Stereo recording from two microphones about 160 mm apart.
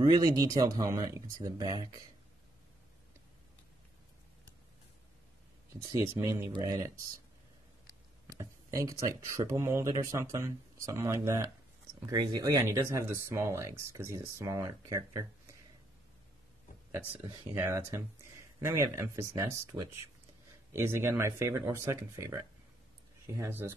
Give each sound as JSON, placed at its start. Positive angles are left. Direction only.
{"t": 0.0, "sound": "speech", "side_deg": -25}
{"t": 5.7, "sound": "speech", "side_deg": -20}
{"t": 8.4, "sound": "speech", "side_deg": -20}
{"t": 17.4, "sound": "speech", "side_deg": -15}